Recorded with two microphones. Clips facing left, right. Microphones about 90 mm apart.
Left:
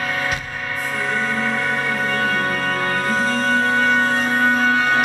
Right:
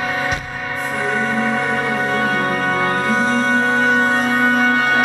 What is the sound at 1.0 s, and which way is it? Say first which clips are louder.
Music: right 3 dB; 15° right (ahead or behind).